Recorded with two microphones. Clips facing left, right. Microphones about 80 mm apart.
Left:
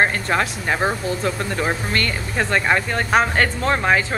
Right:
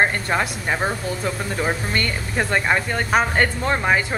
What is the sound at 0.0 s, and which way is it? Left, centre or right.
Speech, centre.